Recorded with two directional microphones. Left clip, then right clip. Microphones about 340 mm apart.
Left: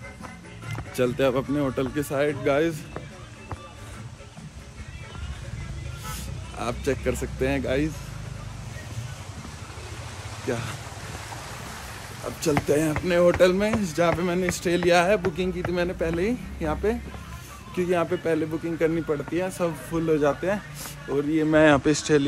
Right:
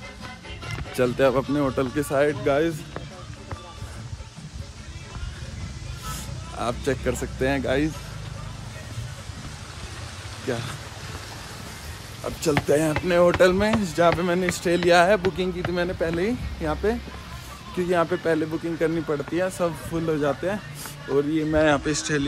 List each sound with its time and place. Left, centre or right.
0.9 s speech: centre
6.5 s speech: centre
12.4 s speech: centre
21.5 s speech: left